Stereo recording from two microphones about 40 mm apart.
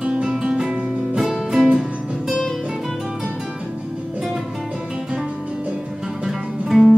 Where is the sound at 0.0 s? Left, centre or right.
Right.